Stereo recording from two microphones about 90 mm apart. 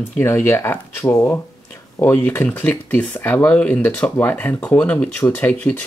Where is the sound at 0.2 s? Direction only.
30° left (ahead or behind).